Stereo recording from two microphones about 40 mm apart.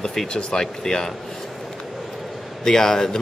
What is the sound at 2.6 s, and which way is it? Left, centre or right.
Speech, centre.